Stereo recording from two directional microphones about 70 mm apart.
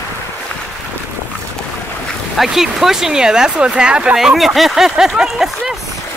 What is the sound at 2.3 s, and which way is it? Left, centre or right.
Speech, centre.